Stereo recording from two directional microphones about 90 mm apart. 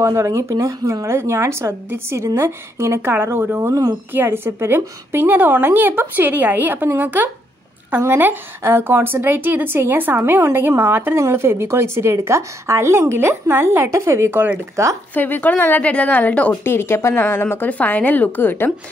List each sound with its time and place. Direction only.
0.0 s a woman's voice: 30° right (ahead or behind)
15.1 s speech: 20° left (ahead or behind)
16.7 s speech: 25° left (ahead or behind)